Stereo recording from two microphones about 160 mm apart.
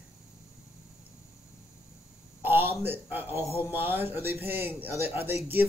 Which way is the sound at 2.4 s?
15° right (ahead or behind).